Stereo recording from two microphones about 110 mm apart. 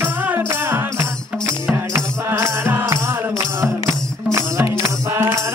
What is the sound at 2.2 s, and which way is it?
Music, 20° right (ahead or behind).